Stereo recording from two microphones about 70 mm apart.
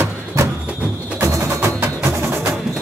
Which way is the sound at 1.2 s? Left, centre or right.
Right.